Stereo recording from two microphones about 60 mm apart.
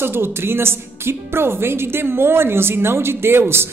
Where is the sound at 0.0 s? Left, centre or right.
Right.